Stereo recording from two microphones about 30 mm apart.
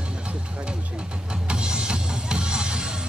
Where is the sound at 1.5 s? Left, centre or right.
Right.